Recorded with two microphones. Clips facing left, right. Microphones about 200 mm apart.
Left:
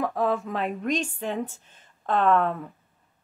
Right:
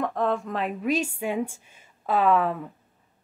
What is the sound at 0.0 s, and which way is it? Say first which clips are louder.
A woman's voice: even; 5° left (ahead or behind).